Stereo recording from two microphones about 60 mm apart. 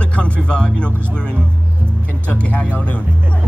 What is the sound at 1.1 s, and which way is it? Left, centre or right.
A man's voice, centre.